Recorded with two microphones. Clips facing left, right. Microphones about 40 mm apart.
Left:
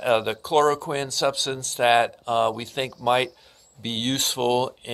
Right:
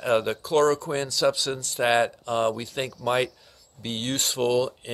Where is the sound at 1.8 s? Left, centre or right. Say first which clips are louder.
Left 3 dB; left.